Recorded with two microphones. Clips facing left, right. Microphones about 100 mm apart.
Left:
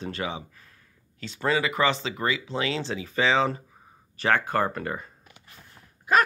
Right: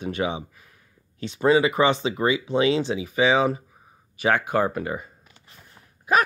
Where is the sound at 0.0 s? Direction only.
20° right (ahead or behind).